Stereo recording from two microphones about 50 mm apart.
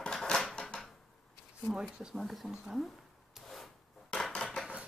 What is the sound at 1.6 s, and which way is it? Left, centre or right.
Speech, centre.